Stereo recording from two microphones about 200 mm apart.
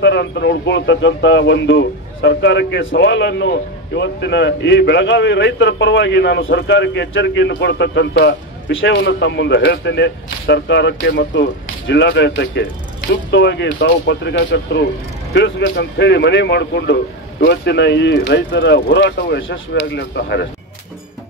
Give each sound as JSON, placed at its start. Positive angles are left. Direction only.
{"t": 0.0, "sound": "speech", "side_deg": 60}